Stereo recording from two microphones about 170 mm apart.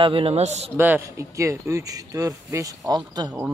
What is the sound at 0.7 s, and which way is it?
Speech, 10° right (ahead or behind).